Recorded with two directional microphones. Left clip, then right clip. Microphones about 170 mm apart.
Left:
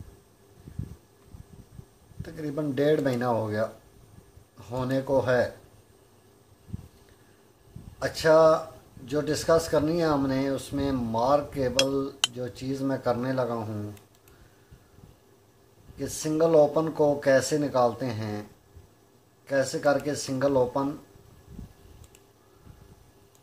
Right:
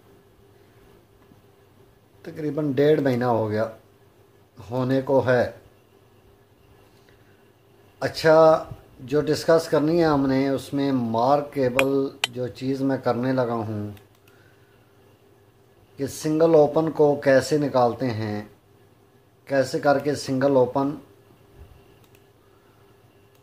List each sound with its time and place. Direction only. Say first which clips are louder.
2.2 s speech: right 5 dB; 35° right (ahead or behind)
8.0 s speech: right 4 dB; 35° right (ahead or behind)
16.0 s speech: right 4 dB; 35° right (ahead or behind)
19.4 s speech: right 4 dB; 35° right (ahead or behind)